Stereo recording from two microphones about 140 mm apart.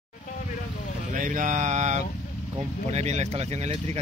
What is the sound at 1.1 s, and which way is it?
Mantra, 70° right (ahead or behind).